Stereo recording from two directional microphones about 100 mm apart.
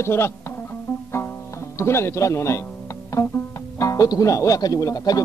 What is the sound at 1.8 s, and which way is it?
Speech, 25° left (ahead or behind).